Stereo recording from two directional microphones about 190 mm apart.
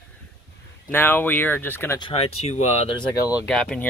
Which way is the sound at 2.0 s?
30° left (ahead or behind).